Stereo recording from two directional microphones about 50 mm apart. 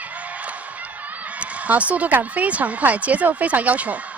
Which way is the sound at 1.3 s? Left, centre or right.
Right.